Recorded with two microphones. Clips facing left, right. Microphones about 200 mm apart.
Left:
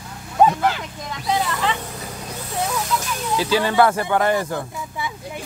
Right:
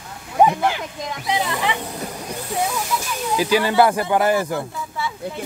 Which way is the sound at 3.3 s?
15° right (ahead or behind).